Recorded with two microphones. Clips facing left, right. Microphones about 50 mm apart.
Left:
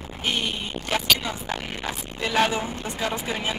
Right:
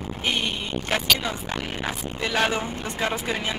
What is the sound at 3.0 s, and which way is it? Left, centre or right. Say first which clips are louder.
Speech: right 2 dB; right.